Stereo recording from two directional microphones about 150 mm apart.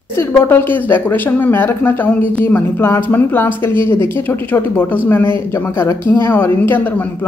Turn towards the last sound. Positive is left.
turn(degrees=10)  # may be behind; listen again after turning